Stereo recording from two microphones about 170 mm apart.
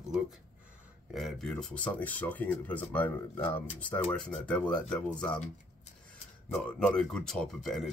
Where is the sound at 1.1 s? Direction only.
Centre (ahead or behind).